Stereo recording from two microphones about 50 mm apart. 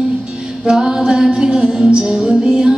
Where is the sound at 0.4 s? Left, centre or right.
Centre.